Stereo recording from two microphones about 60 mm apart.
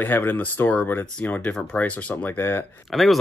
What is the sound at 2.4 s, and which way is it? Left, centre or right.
Speech, left.